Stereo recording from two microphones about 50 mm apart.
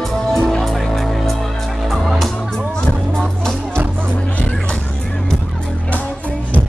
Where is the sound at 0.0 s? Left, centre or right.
Centre.